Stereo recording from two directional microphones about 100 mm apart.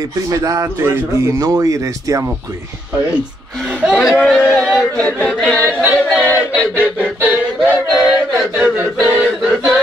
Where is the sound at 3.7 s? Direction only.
10° right (ahead or behind).